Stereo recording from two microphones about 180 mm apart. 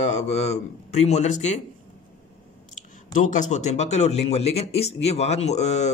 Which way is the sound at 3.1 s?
45° left (ahead or behind).